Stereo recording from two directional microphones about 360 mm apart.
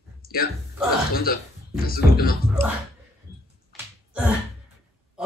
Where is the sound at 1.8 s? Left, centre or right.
Left.